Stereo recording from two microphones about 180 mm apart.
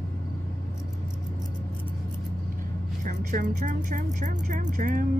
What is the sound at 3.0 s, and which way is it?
A woman's voice, 45° right (ahead or behind).